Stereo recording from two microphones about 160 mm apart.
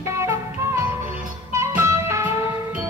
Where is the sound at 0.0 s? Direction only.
20° right (ahead or behind).